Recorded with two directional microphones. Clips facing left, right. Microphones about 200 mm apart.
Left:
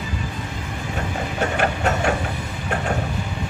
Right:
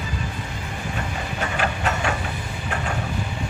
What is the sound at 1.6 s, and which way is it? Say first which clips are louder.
Printer: left 2 dB; 45° left (ahead or behind).